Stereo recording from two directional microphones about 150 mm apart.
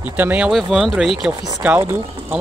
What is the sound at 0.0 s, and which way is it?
Speech, 10° right (ahead or behind).